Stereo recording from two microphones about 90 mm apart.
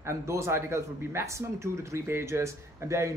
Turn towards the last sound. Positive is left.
turn(degrees=-30)  # may be behind; listen again after turning